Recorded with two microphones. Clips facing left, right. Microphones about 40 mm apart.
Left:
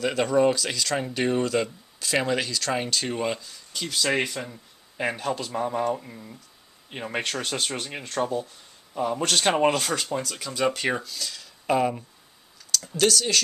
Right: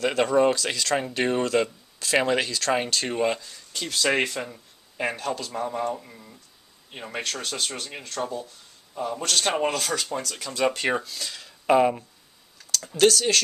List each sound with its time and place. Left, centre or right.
0.0 s speech: centre
5.1 s speech: centre
6.9 s a man's voice: left
10.1 s speech: centre